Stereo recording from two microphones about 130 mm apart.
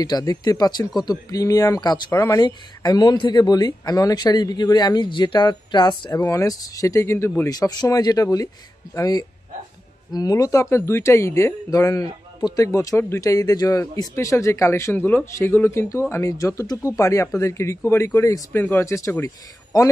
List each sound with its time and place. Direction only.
0.0 s speech: 30° left (ahead or behind)
7.5 s speech: 30° left (ahead or behind)